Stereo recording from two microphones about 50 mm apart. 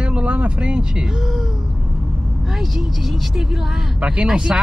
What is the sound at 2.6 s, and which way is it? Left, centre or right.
Speech, centre.